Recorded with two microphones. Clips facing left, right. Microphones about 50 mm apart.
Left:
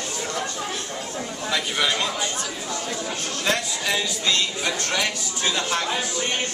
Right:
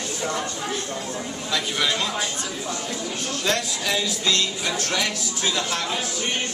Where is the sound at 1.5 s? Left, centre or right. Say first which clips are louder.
Even; centre.